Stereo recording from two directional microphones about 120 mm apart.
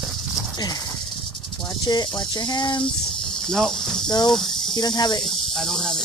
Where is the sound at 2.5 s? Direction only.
40° left (ahead or behind).